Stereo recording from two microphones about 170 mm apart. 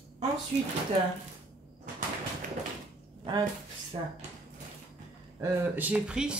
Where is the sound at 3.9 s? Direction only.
35° right (ahead or behind).